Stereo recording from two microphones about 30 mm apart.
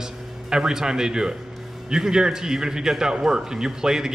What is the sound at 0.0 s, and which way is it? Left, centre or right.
A man's voice, centre.